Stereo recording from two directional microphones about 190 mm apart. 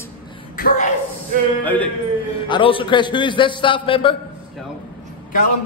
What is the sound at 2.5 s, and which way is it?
A man's voice, 25° left (ahead or behind).